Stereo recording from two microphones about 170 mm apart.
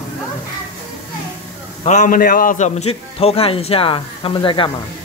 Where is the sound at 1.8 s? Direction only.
45° left (ahead or behind); by 4.6 s 30° left (ahead or behind).